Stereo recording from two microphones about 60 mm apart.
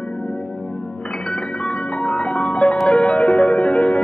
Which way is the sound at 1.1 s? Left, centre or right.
Centre.